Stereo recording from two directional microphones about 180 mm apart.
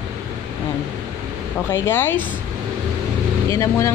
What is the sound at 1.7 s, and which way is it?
Speech, 10° left (ahead or behind).